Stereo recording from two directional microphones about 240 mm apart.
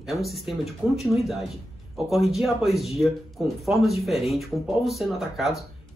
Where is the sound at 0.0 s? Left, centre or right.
Centre.